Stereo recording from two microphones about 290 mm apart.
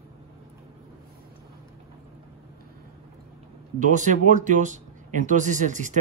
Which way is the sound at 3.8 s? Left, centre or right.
Right.